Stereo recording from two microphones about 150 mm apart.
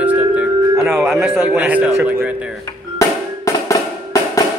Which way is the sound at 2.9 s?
20° left (ahead or behind).